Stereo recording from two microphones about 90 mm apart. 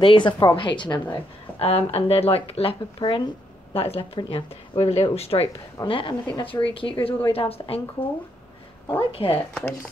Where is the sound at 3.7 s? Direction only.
90° left.